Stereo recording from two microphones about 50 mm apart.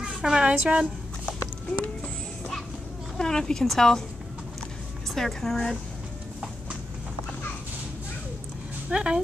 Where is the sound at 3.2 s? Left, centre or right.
Centre.